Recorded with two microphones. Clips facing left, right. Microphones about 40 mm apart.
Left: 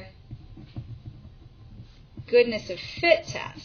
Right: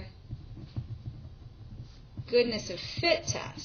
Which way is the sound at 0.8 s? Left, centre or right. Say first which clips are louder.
Left 1 dB; left.